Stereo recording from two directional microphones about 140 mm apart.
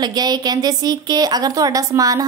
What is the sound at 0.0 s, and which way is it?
A woman's voice, 30° right (ahead or behind).